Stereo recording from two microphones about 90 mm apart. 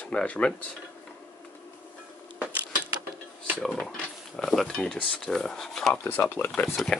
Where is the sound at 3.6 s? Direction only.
5° left (ahead or behind).